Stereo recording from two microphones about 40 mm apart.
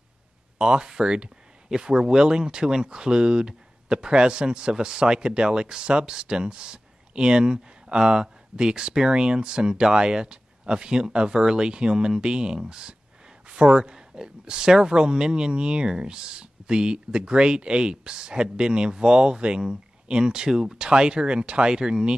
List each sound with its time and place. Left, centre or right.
0.6 s speech: right